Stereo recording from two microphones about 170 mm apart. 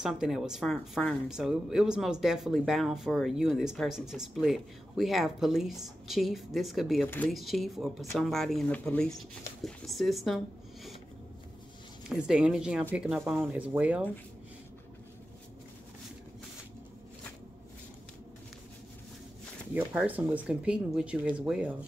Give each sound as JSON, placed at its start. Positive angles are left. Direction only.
{"t": 0.0, "sound": "speech", "side_deg": -5}
{"t": 12.1, "sound": "speech", "side_deg": -5}
{"t": 19.7, "sound": "speech", "side_deg": -10}